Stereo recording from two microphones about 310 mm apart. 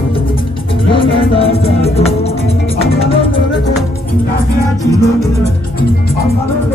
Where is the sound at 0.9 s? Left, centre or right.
Centre.